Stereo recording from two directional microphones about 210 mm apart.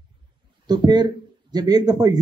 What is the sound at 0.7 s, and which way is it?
Speech, 20° right (ahead or behind).